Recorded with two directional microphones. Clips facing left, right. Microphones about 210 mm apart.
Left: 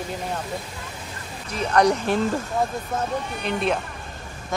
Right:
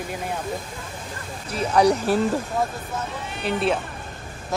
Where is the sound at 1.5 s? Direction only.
10° right (ahead or behind).